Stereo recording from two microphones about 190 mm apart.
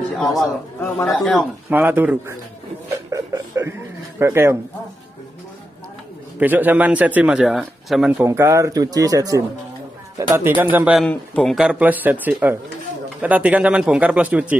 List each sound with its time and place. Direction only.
0.7 s speech: 10° left (ahead or behind)
1.0 s speech: centre (ahead or behind)
1.7 s a man's voice: 10° right (ahead or behind)
6.4 s a man's voice: 10° right (ahead or behind)
8.3 s a man's voice: 15° right (ahead or behind)
11.1 s a man's voice: 5° left (ahead or behind)